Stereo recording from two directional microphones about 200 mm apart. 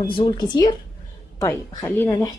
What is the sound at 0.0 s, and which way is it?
A woman's voice, 20° left (ahead or behind).